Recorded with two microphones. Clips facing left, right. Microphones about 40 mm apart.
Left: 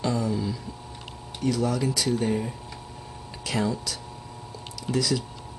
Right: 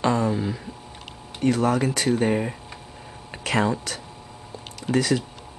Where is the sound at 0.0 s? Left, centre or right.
Right.